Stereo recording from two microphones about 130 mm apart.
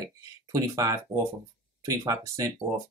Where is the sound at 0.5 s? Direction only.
25° right (ahead or behind).